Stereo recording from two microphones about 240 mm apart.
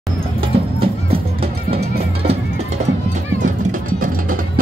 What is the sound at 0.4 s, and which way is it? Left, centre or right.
Music, right.